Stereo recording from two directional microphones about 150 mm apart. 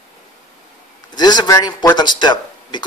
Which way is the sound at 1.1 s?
25° left (ahead or behind).